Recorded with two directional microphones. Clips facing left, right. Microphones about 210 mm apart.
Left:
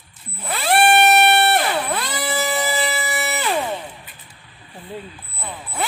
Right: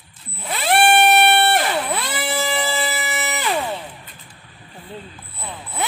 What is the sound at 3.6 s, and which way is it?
Music, 5° left (ahead or behind).